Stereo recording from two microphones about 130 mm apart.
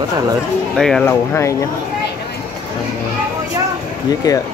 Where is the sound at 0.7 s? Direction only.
5° left (ahead or behind).